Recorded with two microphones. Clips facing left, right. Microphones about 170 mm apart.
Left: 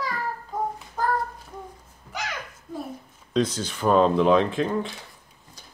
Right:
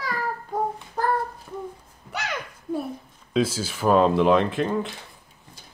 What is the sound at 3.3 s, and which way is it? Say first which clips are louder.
Speech: right 1 dB; 5° right (ahead or behind).